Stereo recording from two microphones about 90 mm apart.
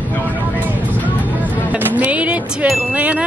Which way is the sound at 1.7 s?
20° right (ahead or behind).